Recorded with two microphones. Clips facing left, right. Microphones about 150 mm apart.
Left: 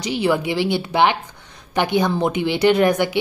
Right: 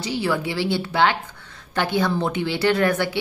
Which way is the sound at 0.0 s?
20° left (ahead or behind).